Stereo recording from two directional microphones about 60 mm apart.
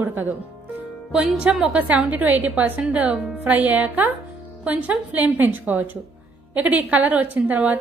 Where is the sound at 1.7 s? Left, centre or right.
Right.